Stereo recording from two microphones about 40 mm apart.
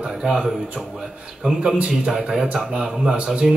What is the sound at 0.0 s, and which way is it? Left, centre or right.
Speech, centre.